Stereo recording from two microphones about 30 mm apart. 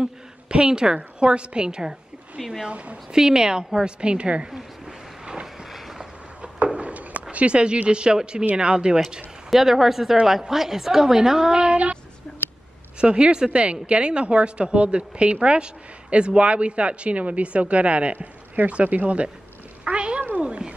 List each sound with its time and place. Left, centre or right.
0.0 s a sound: right
0.9 s a woman's voice: right
2.7 s a woman's voice: right
3.1 s a woman's voice: right
4.5 s a sound: right
6.7 s a sound: right
7.9 s a woman's voice: right
9.5 s a woman's voice: centre
11.1 s speech: right
12.3 s a sound: centre
13.0 s a woman's voice: right
19.9 s cat: right